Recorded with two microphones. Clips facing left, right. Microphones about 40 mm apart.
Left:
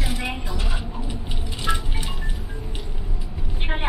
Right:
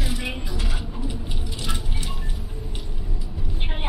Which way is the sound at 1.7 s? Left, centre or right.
Centre.